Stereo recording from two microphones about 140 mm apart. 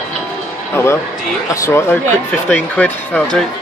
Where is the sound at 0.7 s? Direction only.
20° left (ahead or behind).